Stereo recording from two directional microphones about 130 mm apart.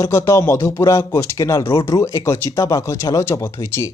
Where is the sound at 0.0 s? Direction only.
20° left (ahead or behind).